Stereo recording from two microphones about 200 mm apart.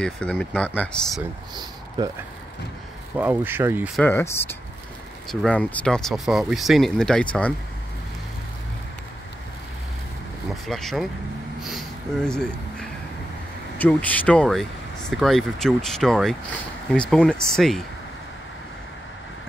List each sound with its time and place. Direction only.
0.0 s speech: 5° left (ahead or behind)
1.5 s speech: 20° right (ahead or behind)
3.2 s speech: 10° right (ahead or behind)
3.9 s speech: 10° left (ahead or behind)
10.5 s speech: centre (ahead or behind)
11.6 s a sound: centre (ahead or behind)
13.7 s speech: 10° left (ahead or behind)